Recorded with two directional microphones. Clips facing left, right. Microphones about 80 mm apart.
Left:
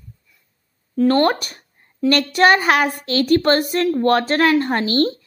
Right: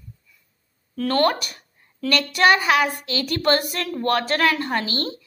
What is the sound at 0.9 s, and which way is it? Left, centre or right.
A woman's voice, left.